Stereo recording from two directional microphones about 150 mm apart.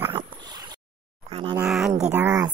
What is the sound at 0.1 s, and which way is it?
Dog, 30° right (ahead or behind).